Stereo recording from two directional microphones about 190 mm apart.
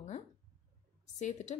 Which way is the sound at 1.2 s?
40° left (ahead or behind).